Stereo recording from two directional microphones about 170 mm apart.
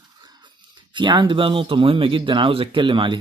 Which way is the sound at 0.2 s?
25° right (ahead or behind).